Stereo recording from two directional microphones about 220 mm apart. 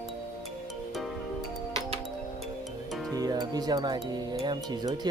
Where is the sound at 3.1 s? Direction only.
15° right (ahead or behind).